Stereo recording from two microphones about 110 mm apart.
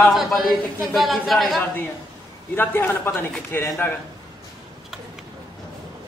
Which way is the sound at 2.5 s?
20° left (ahead or behind).